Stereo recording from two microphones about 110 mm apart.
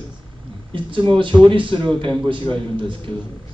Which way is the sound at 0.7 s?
50° right (ahead or behind).